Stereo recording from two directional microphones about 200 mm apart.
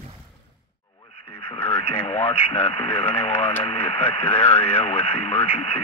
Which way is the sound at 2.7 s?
30° left (ahead or behind).